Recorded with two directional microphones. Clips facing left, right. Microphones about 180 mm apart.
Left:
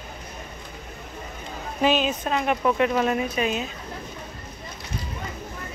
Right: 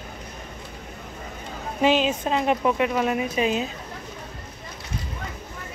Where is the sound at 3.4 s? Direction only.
20° right (ahead or behind).